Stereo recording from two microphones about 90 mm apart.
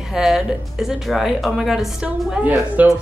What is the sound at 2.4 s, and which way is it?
Speech, 20° right (ahead or behind).